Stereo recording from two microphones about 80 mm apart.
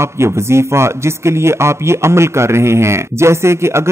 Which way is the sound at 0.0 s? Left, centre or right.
Right.